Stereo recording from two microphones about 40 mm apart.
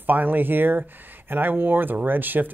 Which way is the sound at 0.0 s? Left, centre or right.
Right.